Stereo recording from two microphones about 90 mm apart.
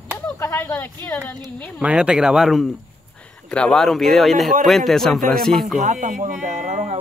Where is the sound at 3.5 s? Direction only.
10° left (ahead or behind).